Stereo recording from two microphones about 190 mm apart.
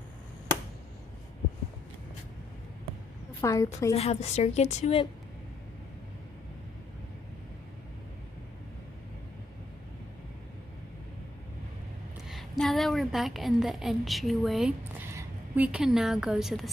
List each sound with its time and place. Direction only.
3.3 s a woman's voice: 20° left (ahead or behind)
3.9 s a woman's voice: 35° left (ahead or behind)
12.3 s a sound: centre (ahead or behind)
15.0 s speech: 10° right (ahead or behind)